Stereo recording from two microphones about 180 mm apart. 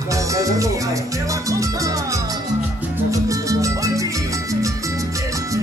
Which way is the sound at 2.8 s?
15° right (ahead or behind).